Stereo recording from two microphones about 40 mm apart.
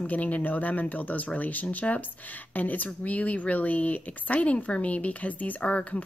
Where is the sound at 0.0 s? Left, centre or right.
Left.